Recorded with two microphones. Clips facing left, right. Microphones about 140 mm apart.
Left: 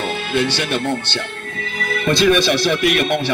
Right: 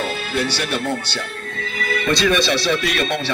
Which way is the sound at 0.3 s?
20° left (ahead or behind).